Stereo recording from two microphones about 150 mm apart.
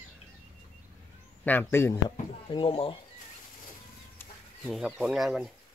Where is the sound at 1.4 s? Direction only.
10° left (ahead or behind).